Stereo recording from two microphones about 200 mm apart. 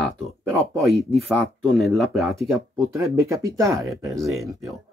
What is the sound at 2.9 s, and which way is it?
Speech, 15° right (ahead or behind).